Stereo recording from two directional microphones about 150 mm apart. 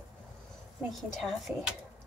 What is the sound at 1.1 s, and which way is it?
Speech, centre (ahead or behind).